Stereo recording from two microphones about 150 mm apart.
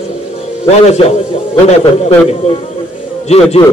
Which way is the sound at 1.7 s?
45° left (ahead or behind).